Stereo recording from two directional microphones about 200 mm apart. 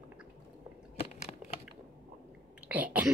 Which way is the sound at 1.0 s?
35° left (ahead or behind).